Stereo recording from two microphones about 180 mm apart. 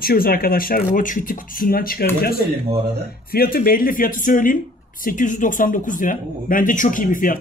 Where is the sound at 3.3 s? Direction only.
55° left (ahead or behind).